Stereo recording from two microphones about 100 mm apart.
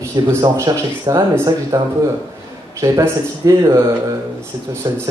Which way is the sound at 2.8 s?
35° right (ahead or behind).